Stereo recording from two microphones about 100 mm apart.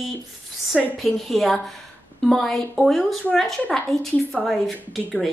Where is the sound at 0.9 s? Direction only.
Centre (ahead or behind).